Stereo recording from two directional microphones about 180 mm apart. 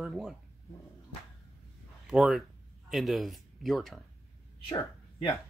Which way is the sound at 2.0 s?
Centre (ahead or behind).